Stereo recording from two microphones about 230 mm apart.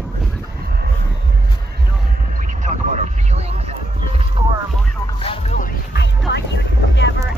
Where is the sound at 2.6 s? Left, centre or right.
Right.